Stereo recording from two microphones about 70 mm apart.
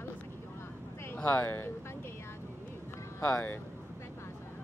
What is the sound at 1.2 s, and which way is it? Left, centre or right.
Speech, centre.